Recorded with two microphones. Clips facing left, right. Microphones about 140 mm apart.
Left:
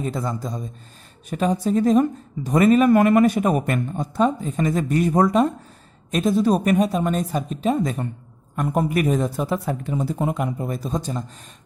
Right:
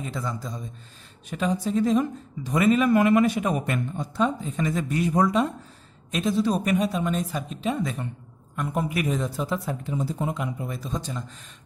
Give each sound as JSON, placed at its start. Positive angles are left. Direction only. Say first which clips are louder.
{"t": 0.0, "sound": "speech", "louder": "left 6 dB", "side_deg": 45}